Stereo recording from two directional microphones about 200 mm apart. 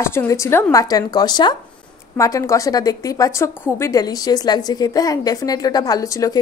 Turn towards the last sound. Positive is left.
turn(degrees=15)  # may be behind; listen again after turning